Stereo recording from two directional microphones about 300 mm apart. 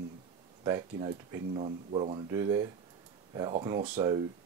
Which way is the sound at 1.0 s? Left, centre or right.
Centre.